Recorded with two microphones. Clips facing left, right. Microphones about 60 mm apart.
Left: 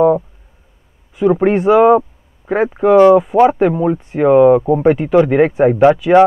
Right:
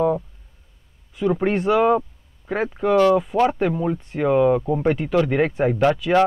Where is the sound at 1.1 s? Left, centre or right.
Centre.